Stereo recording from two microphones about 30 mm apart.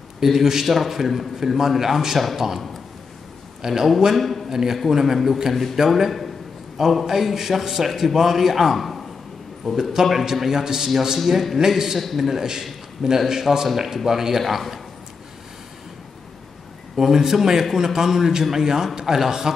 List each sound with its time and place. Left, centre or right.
0.2 s a man's voice: centre
3.6 s a man's voice: centre
4.2 s a man's voice: centre
4.5 s a man's voice: centre
10.0 s a man's voice: centre
11.1 s a man's voice: centre
11.5 s a man's voice: centre
16.9 s a man's voice: centre